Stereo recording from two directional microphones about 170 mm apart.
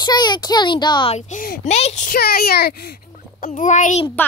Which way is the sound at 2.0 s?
65° left (ahead or behind).